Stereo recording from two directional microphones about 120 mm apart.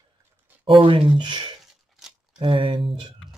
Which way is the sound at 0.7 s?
45° right (ahead or behind).